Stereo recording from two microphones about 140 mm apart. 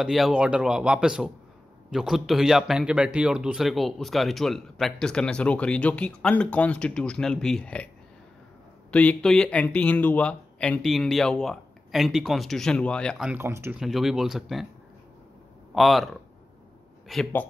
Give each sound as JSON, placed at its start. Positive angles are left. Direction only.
{"t": 0.0, "sound": "a man's voice", "side_deg": -5}
{"t": 8.9, "sound": "a man's voice", "side_deg": 5}
{"t": 13.2, "sound": "speech", "side_deg": -15}
{"t": 13.7, "sound": "a man's voice", "side_deg": 0}
{"t": 15.7, "sound": "a man's voice", "side_deg": 0}